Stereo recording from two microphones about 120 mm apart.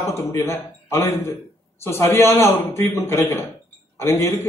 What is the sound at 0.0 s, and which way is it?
A man's voice, 25° left (ahead or behind).